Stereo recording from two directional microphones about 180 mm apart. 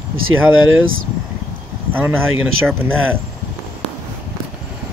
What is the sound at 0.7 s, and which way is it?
Speech, 90° right.